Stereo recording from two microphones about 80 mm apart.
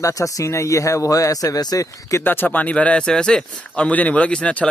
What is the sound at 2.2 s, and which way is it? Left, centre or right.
A man's voice, left.